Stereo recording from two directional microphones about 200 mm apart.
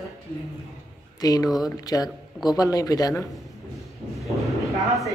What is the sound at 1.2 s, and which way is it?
Speech, 20° left (ahead or behind).